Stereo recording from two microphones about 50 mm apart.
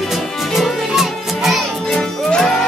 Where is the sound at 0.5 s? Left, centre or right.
Centre.